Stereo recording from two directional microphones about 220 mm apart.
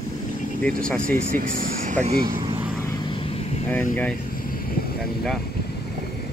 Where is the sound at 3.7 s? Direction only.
5° left (ahead or behind).